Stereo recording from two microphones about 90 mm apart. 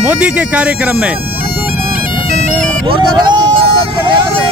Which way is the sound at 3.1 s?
55° right (ahead or behind).